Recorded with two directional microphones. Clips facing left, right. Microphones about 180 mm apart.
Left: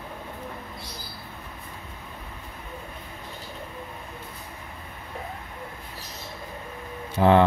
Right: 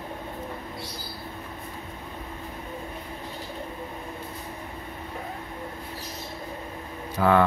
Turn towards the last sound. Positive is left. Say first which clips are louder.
# left 3 dB
turn(degrees=25)  # may be behind; listen again after turning